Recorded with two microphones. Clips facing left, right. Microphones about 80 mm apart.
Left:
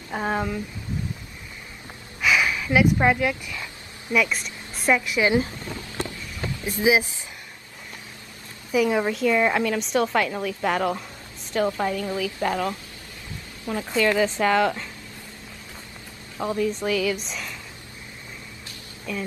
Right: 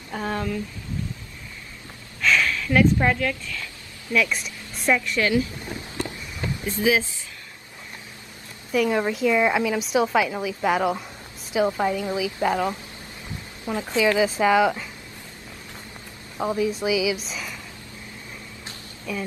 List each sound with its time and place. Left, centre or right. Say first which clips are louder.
0.1 s a woman's voice: left 2 dB; centre
2.2 s speech: even; centre
4.1 s a woman's voice: even; centre
6.8 s speech: left 1 dB; centre
8.7 s a woman's voice: even; centre
16.3 s a woman's voice: right 1 dB; centre
19.1 s a woman's voice: right 1 dB; centre